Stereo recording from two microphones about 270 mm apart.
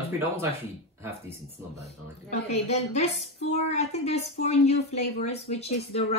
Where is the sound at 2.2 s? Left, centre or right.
Left.